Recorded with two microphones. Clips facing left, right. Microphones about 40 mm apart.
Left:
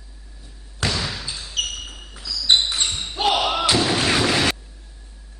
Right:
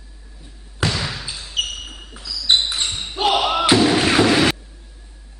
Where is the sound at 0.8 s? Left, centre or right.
Centre.